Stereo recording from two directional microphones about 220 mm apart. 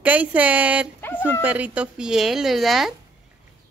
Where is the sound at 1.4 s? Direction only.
5° right (ahead or behind).